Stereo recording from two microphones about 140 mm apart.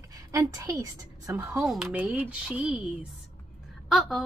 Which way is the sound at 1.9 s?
10° right (ahead or behind).